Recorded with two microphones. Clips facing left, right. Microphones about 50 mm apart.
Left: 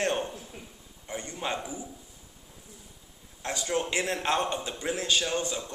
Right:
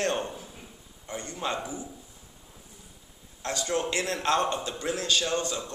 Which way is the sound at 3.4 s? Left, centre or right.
Centre.